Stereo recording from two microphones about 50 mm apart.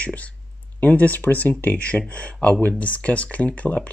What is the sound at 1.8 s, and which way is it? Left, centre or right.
Speech, left.